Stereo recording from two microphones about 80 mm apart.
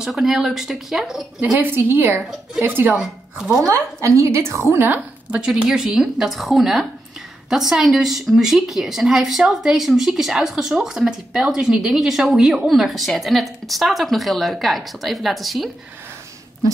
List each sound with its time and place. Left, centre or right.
0.0 s a woman's voice: centre
1.4 s a woman's voice: right
3.6 s a woman's voice: right
5.4 s a woman's voice: centre